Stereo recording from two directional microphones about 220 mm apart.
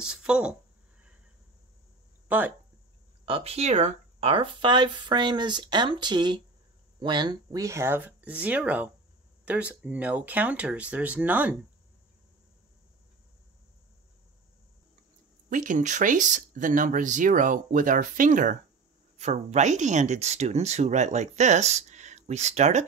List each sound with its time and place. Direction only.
0.0 s speech: 5° right (ahead or behind)
2.2 s speech: 5° right (ahead or behind)
3.3 s speech: 25° right (ahead or behind); by 11.5 s 10° right (ahead or behind)
15.5 s speech: 35° right (ahead or behind)